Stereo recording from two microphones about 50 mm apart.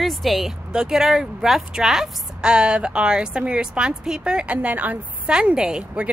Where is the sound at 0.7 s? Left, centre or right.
Centre.